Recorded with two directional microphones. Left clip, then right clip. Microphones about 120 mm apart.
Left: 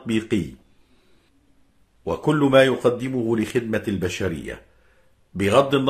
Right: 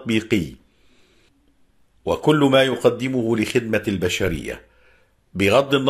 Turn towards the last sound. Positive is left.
turn(degrees=-20)  # may be behind; listen again after turning